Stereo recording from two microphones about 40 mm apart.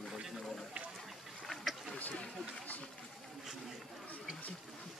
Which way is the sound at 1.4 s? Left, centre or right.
Centre.